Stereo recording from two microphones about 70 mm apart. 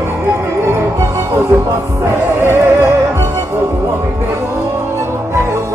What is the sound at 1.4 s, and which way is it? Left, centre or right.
Music, right.